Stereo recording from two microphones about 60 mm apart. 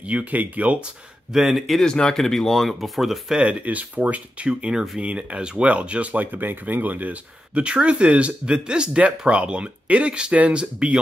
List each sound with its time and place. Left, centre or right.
0.0 s speech: right
1.3 s speech: centre
1.7 s speech: centre
3.3 s speech: centre